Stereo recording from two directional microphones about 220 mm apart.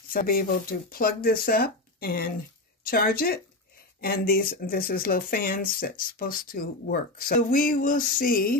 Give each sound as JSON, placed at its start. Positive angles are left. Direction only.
{"t": 0.1, "sound": "speech", "side_deg": 40}